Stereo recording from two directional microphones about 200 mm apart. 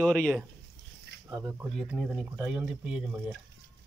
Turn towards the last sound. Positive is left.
turn(degrees=0)  # may be behind; listen again after turning